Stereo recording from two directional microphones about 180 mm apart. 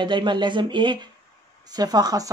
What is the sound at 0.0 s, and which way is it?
Speech, 25° right (ahead or behind).